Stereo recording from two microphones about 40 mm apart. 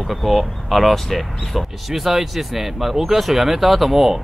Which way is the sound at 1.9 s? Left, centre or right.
Centre.